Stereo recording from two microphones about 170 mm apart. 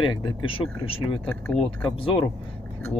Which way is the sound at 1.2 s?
5° left (ahead or behind).